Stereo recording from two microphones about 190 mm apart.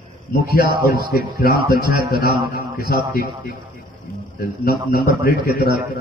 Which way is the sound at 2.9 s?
55° left (ahead or behind).